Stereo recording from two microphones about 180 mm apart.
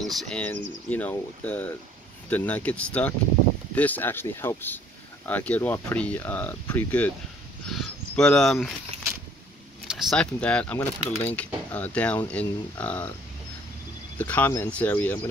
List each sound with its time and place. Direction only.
0.0 s speech: 5° left (ahead or behind)
9.8 s speech: centre (ahead or behind)
14.1 s speech: 10° left (ahead or behind)